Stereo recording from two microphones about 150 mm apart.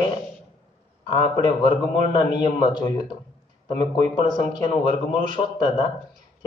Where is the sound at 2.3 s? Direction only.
30° left (ahead or behind).